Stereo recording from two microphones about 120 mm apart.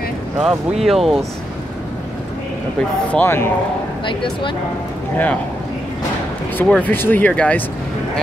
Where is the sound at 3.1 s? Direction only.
15° left (ahead or behind).